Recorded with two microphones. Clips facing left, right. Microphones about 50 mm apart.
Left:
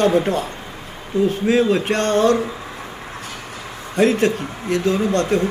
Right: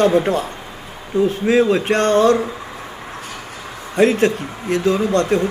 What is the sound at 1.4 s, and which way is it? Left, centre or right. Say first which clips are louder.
Speech: right 3 dB; right.